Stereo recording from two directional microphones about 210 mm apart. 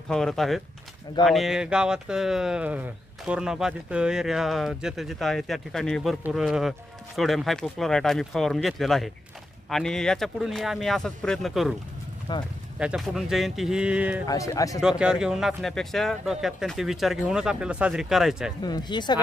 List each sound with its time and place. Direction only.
0.1 s speech: centre (ahead or behind)
12.3 s speech: 20° left (ahead or behind)
12.7 s speech: 5° right (ahead or behind)
14.2 s speech: 15° left (ahead or behind)
14.8 s speech: 5° right (ahead or behind)
18.6 s speech: 20° left (ahead or behind)